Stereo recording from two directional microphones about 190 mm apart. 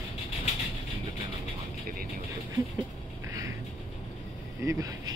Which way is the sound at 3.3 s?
15° right (ahead or behind).